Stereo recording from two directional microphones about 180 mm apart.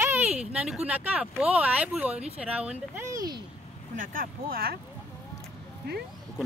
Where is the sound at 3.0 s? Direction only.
20° right (ahead or behind).